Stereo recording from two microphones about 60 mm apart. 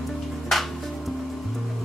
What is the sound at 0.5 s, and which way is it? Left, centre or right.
Music, centre.